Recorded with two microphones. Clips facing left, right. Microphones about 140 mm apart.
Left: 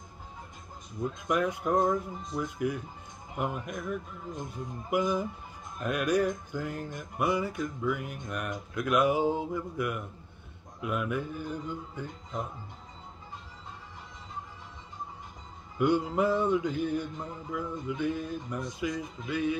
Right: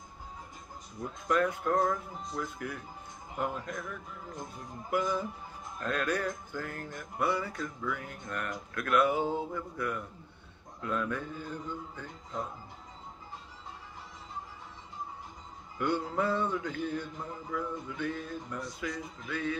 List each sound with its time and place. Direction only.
1.2 s music: 15° left (ahead or behind)
15.8 s music: 15° left (ahead or behind)